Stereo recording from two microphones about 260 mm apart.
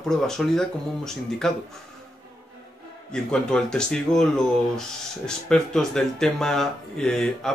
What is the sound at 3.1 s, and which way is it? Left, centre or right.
Speech, centre.